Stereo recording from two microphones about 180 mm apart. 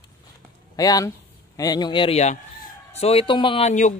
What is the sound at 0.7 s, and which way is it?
A man's voice, 20° left (ahead or behind).